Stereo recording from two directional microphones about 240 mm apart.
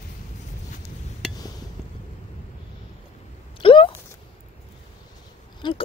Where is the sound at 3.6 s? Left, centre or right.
Left.